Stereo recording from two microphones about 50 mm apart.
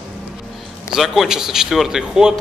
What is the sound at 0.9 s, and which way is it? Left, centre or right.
A man's voice, centre.